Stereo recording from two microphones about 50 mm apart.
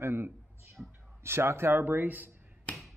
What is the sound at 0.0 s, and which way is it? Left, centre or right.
Speech, right.